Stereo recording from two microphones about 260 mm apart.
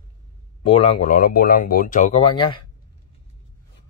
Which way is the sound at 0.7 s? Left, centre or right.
Left.